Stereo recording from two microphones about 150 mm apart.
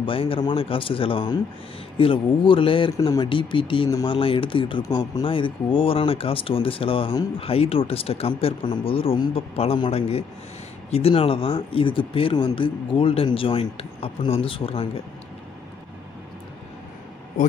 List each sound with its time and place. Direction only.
0.0 s speech: 35° left (ahead or behind)
4.8 s speech: 25° left (ahead or behind)
5.2 s speech: 35° left (ahead or behind)